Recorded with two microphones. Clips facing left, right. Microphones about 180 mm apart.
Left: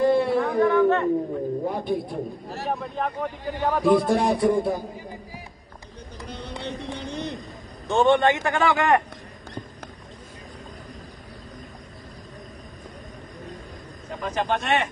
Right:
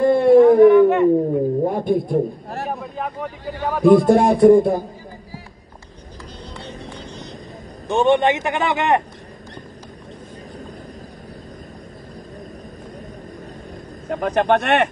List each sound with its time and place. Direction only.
0.0 s a sound: 50° right (ahead or behind)
0.6 s a sound: 15° right (ahead or behind)
1.6 s a sound: 50° right (ahead or behind)
2.8 s vehicle: 5° right (ahead or behind)
3.6 s a man's voice: 10° right (ahead or behind)
4.1 s speech: 50° right (ahead or behind)
6.6 s music: 60° left (ahead or behind)
7.9 s a man's voice: 15° right (ahead or behind)
14.0 s speech: 60° right (ahead or behind)